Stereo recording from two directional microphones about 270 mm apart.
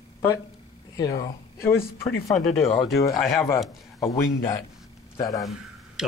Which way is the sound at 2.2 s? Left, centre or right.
Centre.